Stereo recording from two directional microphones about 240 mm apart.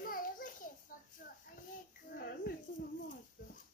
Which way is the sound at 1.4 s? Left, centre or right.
Left.